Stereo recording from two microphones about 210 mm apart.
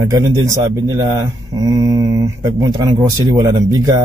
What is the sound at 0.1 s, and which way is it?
Speech, 15° right (ahead or behind).